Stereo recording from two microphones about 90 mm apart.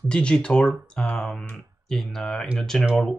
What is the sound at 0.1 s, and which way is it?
Speech, 10° left (ahead or behind).